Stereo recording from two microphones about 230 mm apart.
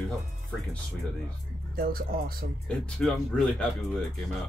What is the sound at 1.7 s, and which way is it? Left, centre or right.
Speech, right.